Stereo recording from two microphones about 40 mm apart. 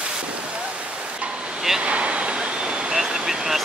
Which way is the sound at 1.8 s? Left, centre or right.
Right.